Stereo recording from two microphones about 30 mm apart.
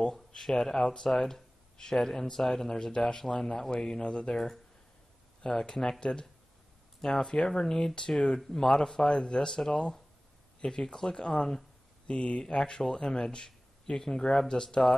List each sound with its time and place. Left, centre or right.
0.4 s speech: centre
4.0 s speech: left
4.3 s speech: centre
9.5 s speech: centre